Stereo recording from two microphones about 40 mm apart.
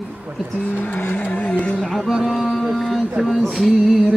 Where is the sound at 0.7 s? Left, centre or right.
Left.